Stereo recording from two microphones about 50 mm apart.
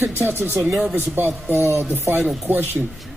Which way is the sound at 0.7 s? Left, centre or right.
Centre.